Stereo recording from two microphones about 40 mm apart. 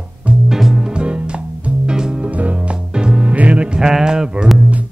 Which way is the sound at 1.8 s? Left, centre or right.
Centre.